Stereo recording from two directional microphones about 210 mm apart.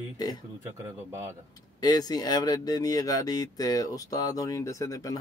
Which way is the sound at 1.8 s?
20° left (ahead or behind).